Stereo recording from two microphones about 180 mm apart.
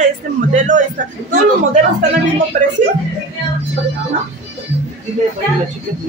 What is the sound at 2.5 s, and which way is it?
Speech, 45° right (ahead or behind).